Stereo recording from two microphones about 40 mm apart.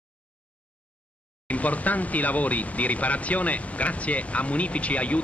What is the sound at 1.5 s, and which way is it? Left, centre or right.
Speech, left.